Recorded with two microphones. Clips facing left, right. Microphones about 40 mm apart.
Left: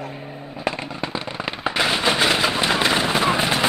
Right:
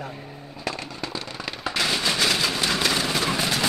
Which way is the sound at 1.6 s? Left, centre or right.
Left.